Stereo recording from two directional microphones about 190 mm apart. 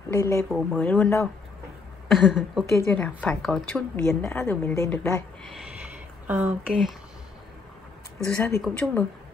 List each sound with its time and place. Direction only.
0.1 s a woman's voice: 15° left (ahead or behind)
4.2 s speech: 15° left (ahead or behind)
6.2 s speech: 10° right (ahead or behind)
8.4 s a woman's voice: 10° left (ahead or behind)